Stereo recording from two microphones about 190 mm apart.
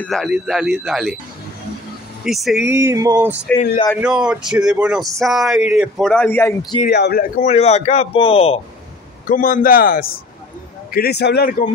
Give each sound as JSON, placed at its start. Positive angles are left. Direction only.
{"t": 0.0, "sound": "speech", "side_deg": 0}
{"t": 2.2, "sound": "speech", "side_deg": 0}
{"t": 2.6, "sound": "a sound", "side_deg": -15}
{"t": 4.0, "sound": "speech", "side_deg": -5}
{"t": 6.9, "sound": "a man's voice", "side_deg": 55}
{"t": 9.3, "sound": "a man's voice", "side_deg": 45}